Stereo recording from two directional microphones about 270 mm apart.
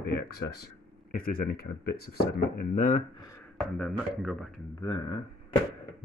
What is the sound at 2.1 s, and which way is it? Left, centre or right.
Speech, left.